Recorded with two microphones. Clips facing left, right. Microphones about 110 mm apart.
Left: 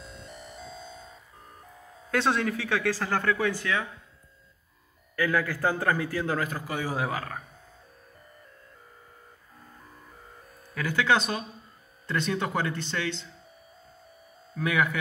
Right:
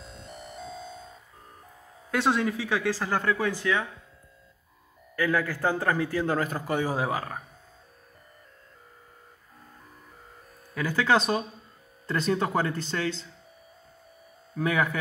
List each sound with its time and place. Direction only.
0.0 s music: 45° right (ahead or behind)
2.0 s speech: 10° right (ahead or behind)
3.4 s a man's voice: 25° right (ahead or behind)
5.3 s a man's voice: 5° right (ahead or behind)
5.7 s a man's voice: 20° right (ahead or behind)
6.2 s a man's voice: 35° right (ahead or behind)
10.7 s speech: 30° right (ahead or behind)
14.6 s speech: 30° right (ahead or behind)